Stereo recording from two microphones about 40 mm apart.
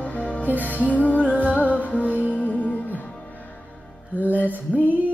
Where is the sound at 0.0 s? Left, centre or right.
Left.